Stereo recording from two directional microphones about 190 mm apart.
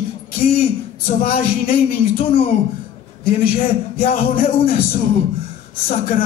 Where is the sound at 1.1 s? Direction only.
45° left (ahead or behind).